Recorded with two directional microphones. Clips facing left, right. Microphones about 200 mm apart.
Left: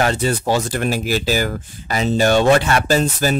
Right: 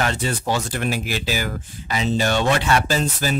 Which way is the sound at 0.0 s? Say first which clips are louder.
Left 5 dB; 40° left (ahead or behind).